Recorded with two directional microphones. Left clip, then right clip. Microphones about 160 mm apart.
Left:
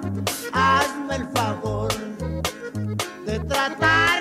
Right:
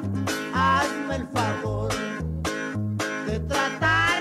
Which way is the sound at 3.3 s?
30° left (ahead or behind).